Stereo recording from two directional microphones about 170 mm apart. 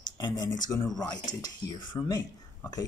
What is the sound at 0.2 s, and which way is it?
Speech, 25° left (ahead or behind).